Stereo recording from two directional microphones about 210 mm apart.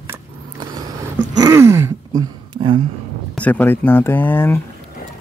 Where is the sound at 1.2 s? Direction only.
90° right.